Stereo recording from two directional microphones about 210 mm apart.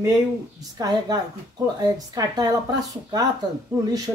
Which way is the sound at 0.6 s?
20° right (ahead or behind).